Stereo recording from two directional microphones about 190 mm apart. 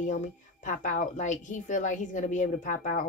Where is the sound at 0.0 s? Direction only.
40° left (ahead or behind).